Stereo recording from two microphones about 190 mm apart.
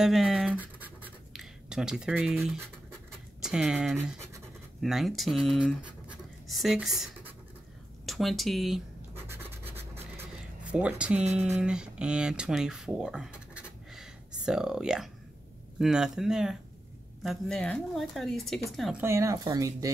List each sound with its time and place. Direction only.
0.0 s scratch: centre (ahead or behind)
3.3 s speech: 5° right (ahead or behind)
9.8 s scratch: 10° right (ahead or behind)
11.3 s speech: 5° right (ahead or behind)
19.0 s speech: 15° right (ahead or behind)